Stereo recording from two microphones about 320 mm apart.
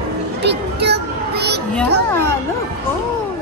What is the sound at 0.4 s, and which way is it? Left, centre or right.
Music, right.